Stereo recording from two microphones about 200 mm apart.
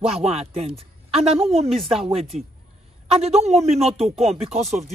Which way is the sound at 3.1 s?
30° right (ahead or behind).